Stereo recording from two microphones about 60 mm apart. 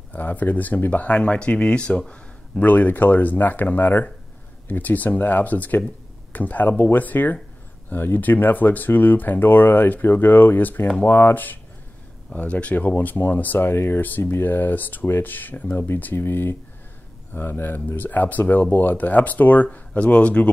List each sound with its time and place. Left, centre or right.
0.1 s speech: left
2.6 s speech: left